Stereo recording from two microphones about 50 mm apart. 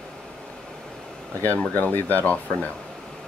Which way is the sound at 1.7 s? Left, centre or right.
Left.